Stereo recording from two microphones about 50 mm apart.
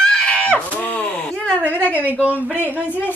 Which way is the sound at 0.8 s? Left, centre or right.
Left.